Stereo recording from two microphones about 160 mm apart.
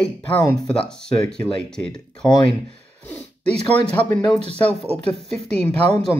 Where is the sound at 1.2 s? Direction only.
5° left (ahead or behind).